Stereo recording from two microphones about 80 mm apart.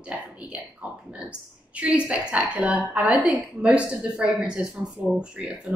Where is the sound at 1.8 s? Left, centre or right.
Centre.